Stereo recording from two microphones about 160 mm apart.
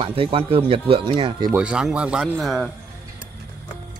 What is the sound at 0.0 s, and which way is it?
Speech, 35° right (ahead or behind).